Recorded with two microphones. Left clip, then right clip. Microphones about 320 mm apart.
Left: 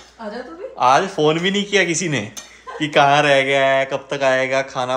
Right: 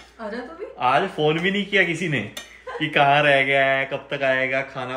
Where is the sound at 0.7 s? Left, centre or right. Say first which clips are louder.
Left 5 dB; centre.